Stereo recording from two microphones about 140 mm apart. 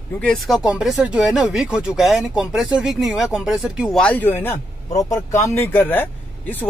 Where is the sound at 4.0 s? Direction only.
10° left (ahead or behind).